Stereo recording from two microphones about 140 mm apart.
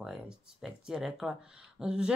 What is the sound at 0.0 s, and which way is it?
Speech, 5° right (ahead or behind).